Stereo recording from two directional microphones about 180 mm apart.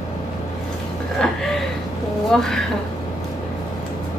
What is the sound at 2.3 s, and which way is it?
Speech, centre (ahead or behind).